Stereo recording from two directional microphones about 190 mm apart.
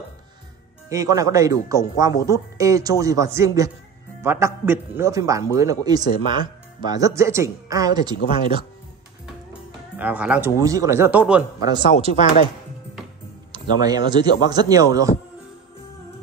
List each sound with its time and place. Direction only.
0.8 s a man's voice: 15° right (ahead or behind)
9.5 s music: 10° right (ahead or behind)
10.6 s a man's voice: 15° right (ahead or behind)
11.6 s speech: 25° right (ahead or behind)
13.5 s speech: 20° right (ahead or behind)